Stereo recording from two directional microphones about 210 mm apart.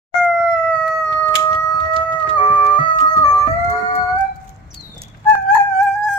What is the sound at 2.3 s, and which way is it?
Music, 25° left (ahead or behind).